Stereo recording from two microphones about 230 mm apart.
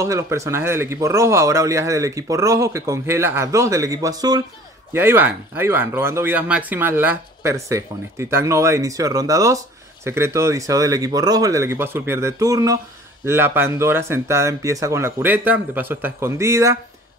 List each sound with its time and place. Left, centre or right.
0.0 s speech: centre